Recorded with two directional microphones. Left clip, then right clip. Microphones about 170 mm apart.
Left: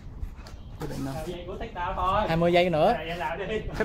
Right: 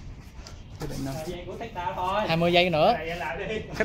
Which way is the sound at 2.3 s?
35° left (ahead or behind).